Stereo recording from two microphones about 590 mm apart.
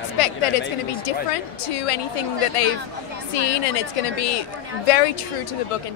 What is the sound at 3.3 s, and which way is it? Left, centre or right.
A woman's voice, left.